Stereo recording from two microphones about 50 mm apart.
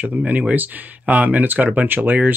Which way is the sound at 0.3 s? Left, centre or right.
Right.